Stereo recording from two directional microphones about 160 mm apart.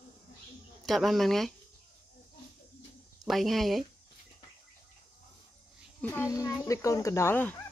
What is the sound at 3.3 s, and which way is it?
Speech, centre (ahead or behind).